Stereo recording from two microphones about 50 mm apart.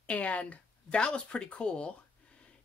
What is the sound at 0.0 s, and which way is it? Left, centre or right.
Speech, left.